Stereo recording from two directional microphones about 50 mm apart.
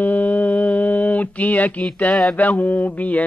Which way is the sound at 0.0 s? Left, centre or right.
Left.